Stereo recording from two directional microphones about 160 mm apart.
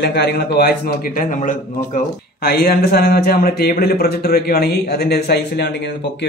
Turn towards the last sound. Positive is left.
turn(degrees=90)